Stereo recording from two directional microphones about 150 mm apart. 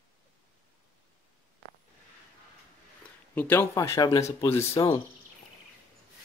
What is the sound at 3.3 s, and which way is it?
Speech, 15° left (ahead or behind).